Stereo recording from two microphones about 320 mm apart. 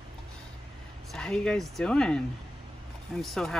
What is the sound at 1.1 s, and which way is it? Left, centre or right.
Speech, centre.